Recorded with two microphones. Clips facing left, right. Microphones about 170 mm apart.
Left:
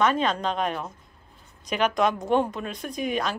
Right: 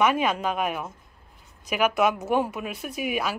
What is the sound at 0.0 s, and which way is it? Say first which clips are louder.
Speech: even; 10° right (ahead or behind).